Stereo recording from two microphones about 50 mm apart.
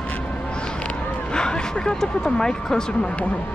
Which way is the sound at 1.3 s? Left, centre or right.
Centre.